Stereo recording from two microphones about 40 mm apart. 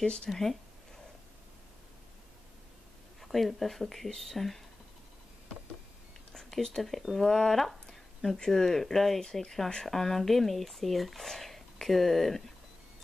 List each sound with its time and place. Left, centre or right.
0.0 s speech: left
0.3 s speech: centre
3.2 s speech: centre
6.3 s speech: centre